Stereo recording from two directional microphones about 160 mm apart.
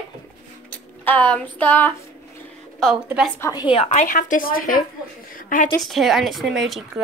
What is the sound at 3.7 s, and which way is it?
A woman's voice, 45° left (ahead or behind).